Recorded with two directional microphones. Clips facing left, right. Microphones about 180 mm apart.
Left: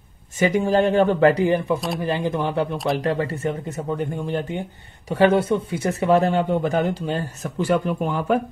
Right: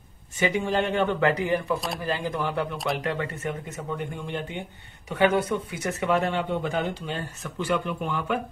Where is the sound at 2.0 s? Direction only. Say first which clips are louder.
Left 5 dB; 20° left (ahead or behind).